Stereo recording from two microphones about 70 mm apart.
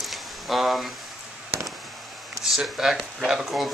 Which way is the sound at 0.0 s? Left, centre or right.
Centre.